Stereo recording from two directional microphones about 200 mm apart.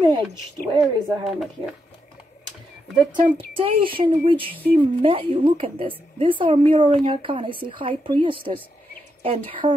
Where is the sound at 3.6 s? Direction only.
25° right (ahead or behind).